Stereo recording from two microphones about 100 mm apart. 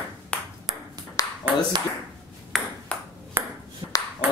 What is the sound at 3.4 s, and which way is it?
Ping, 25° right (ahead or behind).